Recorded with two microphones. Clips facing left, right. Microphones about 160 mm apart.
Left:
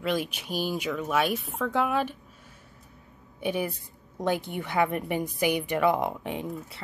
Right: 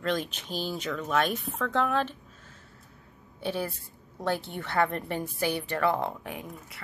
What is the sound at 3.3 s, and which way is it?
A woman's voice, 15° left (ahead or behind).